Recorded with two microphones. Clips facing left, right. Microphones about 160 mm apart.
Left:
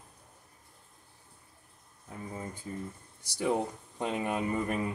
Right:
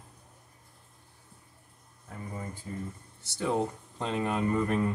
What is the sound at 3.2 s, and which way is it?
Speech, 15° left (ahead or behind).